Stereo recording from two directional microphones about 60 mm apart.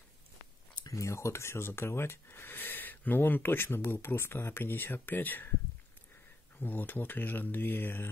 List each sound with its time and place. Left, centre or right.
0.8 s speech: left
6.6 s speech: left